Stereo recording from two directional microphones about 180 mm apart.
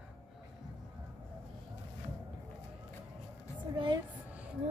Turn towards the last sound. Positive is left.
turn(degrees=-25)  # may be behind; listen again after turning